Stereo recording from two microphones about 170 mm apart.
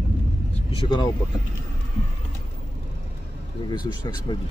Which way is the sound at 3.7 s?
25° left (ahead or behind).